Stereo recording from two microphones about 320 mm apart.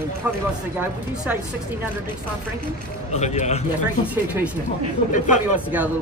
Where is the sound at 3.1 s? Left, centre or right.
Left.